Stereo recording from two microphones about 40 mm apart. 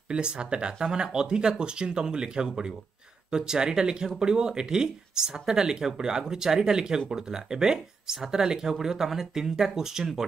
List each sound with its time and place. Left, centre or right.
0.1 s speech: right